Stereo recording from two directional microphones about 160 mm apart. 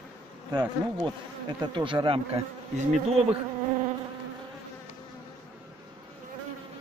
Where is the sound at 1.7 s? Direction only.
30° right (ahead or behind).